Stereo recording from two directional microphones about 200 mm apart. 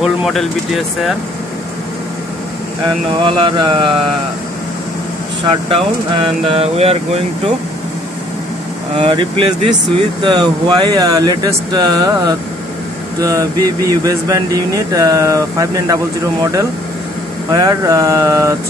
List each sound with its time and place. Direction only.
0.0 s speech: centre (ahead or behind)
3.3 s speech: 25° right (ahead or behind)
5.4 s speech: 25° right (ahead or behind)
8.9 s speech: 25° right (ahead or behind)
17.5 s speech: 20° right (ahead or behind)